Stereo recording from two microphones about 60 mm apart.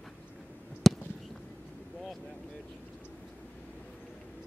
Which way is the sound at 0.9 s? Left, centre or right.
Centre.